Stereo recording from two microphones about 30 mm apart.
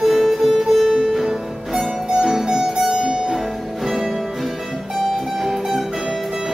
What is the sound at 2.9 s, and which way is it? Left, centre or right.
Music, right.